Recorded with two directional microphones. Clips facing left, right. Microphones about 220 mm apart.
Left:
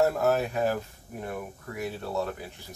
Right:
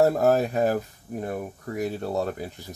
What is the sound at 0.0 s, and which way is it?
Speech, 35° right (ahead or behind).